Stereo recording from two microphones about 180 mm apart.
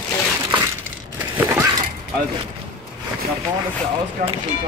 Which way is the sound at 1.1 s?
15° right (ahead or behind).